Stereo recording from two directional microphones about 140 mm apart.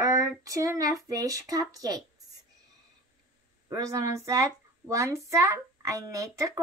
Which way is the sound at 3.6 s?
25° right (ahead or behind).